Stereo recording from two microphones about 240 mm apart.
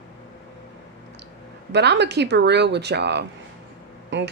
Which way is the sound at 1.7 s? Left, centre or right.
Right.